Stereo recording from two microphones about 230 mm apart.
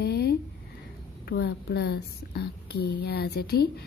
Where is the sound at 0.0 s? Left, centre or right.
Left.